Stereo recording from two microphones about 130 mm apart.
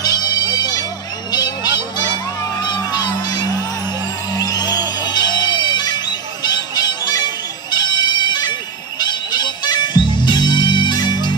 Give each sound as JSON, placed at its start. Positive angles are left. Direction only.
{"t": 0.0, "sound": "bagpipes", "side_deg": 30}
{"t": 1.3, "sound": "honk", "side_deg": 30}
{"t": 2.6, "sound": "music", "side_deg": 35}